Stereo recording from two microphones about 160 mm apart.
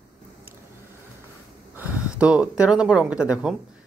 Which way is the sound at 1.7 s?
10° right (ahead or behind).